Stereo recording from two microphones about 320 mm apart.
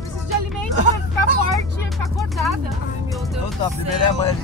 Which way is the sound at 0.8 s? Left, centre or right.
Right.